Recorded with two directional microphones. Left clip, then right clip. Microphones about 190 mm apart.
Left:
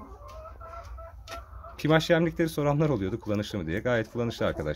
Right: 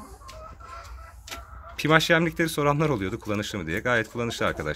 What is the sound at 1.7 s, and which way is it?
Speech, 5° left (ahead or behind).